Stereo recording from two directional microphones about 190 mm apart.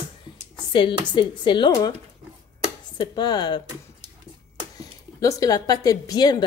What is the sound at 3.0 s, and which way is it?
Speech, 20° left (ahead or behind).